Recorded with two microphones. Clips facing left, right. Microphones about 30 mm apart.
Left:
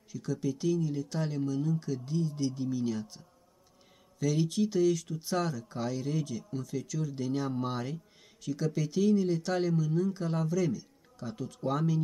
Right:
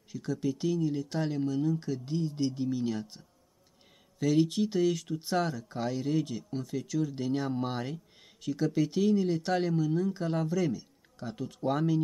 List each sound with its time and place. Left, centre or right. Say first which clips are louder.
0.1 s speech: right 1 dB; right